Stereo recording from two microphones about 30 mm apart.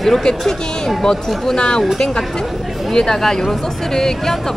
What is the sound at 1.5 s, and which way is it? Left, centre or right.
Speech, left.